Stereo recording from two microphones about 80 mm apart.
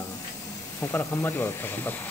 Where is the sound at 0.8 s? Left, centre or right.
Left.